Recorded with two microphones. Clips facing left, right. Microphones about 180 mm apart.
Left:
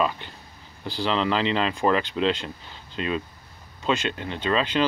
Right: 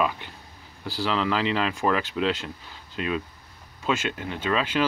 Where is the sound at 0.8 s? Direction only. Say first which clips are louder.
Left 1 dB; 5° right (ahead or behind).